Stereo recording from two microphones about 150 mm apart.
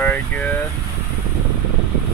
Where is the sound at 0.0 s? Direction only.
15° left (ahead or behind).